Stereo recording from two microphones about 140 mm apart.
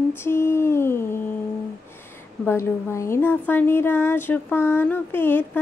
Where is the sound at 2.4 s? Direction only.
20° left (ahead or behind).